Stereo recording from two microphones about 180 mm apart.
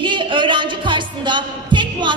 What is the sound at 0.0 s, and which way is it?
Speech, 25° right (ahead or behind).